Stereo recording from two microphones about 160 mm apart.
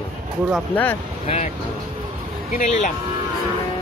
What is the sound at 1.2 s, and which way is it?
Speech, 40° left (ahead or behind).